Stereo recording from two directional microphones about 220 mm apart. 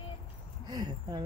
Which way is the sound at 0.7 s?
20° right (ahead or behind).